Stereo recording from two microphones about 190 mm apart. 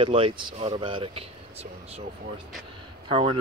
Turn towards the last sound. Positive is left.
turn(degrees=-30)  # may be behind; listen again after turning